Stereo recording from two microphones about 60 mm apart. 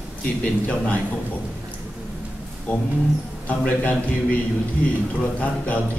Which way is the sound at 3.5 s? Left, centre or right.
Left.